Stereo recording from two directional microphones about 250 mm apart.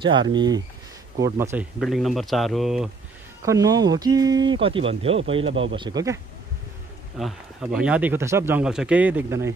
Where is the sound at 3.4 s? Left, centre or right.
Centre.